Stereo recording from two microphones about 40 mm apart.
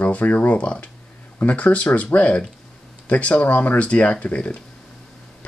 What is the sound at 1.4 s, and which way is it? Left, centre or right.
Speech, left.